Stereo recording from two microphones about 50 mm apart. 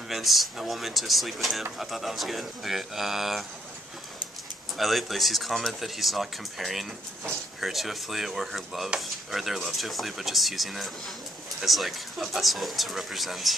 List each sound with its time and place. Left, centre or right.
0.1 s speech: centre
4.7 s speech: centre